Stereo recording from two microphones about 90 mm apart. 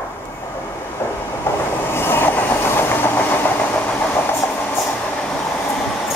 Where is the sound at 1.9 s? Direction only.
25° left (ahead or behind).